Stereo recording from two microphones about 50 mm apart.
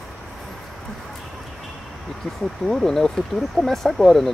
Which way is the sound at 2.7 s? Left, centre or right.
Centre.